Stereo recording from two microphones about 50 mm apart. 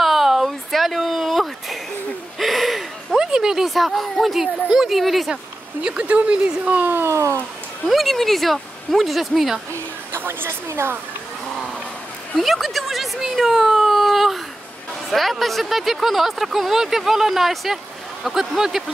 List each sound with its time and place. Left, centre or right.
0.0 s a sound: centre
3.2 s a sound: centre
3.6 s speech: centre
5.3 s speech: centre
7.1 s speech: right
7.9 s speech: centre
10.1 s speech: right
12.4 s speech: centre